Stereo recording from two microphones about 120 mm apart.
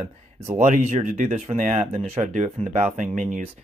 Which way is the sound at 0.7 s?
90° right.